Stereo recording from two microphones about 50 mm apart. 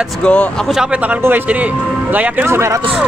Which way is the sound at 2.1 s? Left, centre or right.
Right.